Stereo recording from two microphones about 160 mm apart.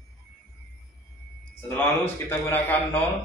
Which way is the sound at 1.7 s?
15° left (ahead or behind).